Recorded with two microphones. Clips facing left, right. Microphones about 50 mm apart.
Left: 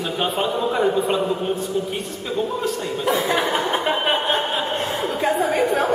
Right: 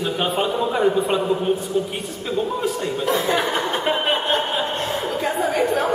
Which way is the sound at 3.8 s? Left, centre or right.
Centre.